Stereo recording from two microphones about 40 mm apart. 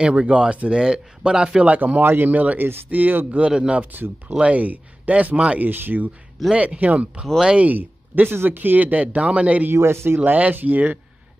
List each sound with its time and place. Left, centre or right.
0.0 s speech: right
2.0 s speech: right
2.3 s speech: right
3.3 s speech: right
5.7 s speech: right
6.5 s speech: right
7.6 s speech: right
9.7 s speech: right
10.2 s speech: right